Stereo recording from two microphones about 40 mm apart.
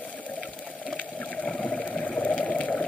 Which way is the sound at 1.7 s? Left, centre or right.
Centre.